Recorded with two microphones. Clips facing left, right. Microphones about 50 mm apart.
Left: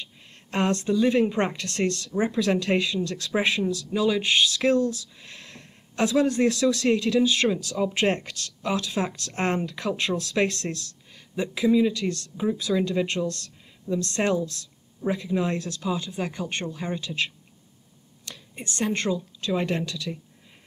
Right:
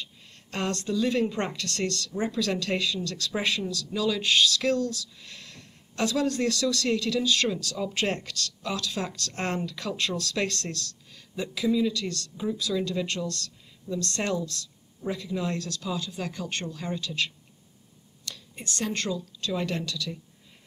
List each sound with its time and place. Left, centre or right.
0.0 s a woman's voice: left